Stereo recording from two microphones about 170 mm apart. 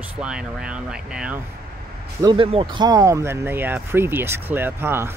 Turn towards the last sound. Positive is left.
turn(degrees=-15)  # may be behind; listen again after turning